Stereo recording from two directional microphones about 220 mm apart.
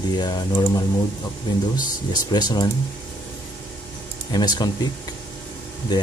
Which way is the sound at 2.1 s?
20° left (ahead or behind).